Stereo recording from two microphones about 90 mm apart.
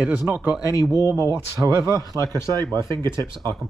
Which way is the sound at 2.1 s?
45° right (ahead or behind).